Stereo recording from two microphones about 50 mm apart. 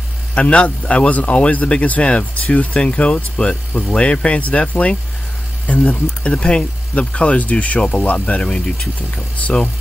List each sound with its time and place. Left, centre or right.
0.3 s a man's voice: left
8.4 s a man's voice: centre